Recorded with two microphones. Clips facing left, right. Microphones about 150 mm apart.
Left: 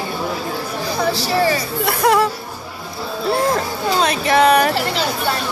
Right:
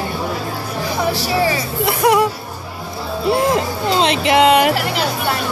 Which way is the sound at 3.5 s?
20° right (ahead or behind).